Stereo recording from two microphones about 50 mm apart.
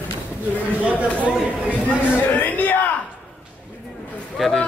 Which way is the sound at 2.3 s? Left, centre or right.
Left.